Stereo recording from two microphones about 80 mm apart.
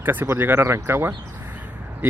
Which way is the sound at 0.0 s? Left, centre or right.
Right.